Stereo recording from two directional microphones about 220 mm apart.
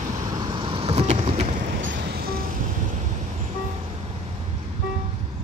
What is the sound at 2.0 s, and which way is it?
Music, 45° right (ahead or behind).